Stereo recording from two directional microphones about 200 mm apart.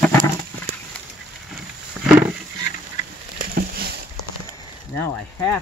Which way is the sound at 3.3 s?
50° right (ahead or behind).